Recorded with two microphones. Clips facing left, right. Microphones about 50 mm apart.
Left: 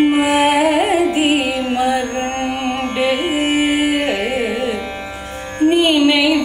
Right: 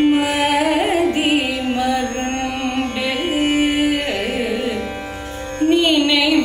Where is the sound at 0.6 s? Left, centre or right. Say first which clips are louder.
Left 2 dB; centre.